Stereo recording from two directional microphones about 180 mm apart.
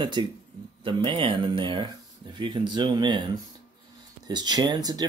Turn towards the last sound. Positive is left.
turn(degrees=-20)  # may be behind; listen again after turning